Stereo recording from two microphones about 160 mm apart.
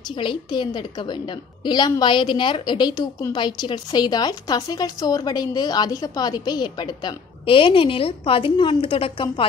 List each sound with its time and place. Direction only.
0.2 s a woman's voice: 30° left (ahead or behind)